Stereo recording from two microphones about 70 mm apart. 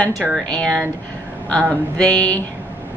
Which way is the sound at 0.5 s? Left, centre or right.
Centre.